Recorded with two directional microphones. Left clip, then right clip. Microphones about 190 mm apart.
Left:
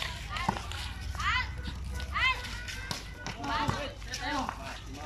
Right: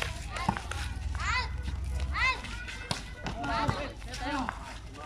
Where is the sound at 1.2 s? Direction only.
55° right (ahead or behind).